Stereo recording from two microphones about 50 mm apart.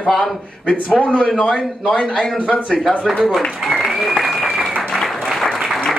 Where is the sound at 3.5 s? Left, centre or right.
Centre.